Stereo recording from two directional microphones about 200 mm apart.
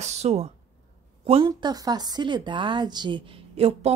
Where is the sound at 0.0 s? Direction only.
35° right (ahead or behind).